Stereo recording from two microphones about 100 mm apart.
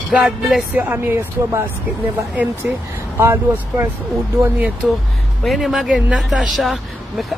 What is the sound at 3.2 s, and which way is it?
Speech, 20° right (ahead or behind).